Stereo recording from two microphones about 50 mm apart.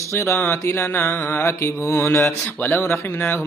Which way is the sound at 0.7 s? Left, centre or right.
Left.